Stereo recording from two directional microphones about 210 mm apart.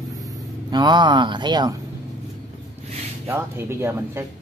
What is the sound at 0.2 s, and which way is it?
Speech, 20° right (ahead or behind).